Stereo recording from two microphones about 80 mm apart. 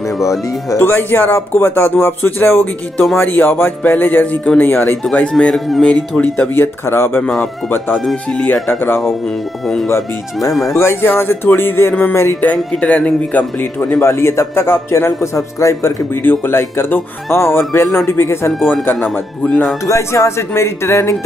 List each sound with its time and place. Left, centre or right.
0.2 s speech: left
5.3 s speech: centre
5.9 s speech: centre
8.0 s speech: centre
8.6 s a man's voice: left
12.7 s speech: centre
13.7 s a man's voice: left
16.2 s a man's voice: left
18.9 s speech: centre
19.9 s a man's voice: left